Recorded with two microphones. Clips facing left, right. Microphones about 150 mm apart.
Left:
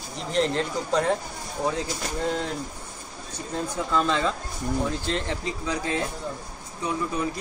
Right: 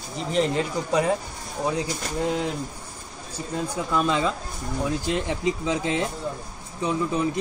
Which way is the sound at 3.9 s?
10° right (ahead or behind).